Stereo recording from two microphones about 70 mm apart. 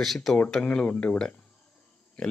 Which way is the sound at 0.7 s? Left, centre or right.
Centre.